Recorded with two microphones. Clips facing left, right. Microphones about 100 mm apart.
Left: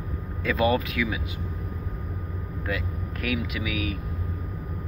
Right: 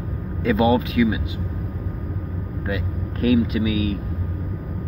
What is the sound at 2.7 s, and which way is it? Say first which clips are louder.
Speech: right 3 dB; 30° right (ahead or behind).